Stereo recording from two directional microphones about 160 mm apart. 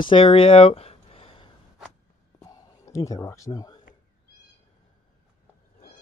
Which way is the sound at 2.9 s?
20° left (ahead or behind).